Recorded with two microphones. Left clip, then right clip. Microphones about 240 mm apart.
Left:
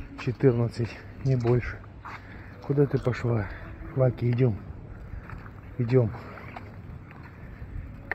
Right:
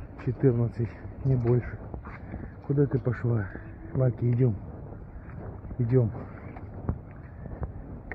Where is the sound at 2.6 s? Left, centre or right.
Centre.